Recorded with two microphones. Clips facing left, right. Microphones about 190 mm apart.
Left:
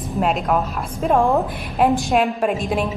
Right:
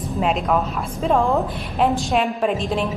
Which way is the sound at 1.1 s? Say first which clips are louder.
Left 2 dB; 15° left (ahead or behind).